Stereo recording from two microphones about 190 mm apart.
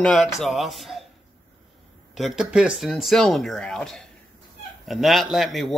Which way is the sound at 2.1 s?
Centre (ahead or behind).